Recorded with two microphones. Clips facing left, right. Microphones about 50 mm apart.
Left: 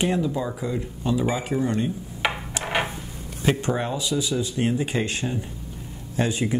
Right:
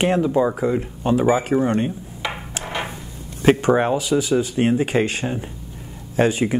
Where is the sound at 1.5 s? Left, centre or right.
Right.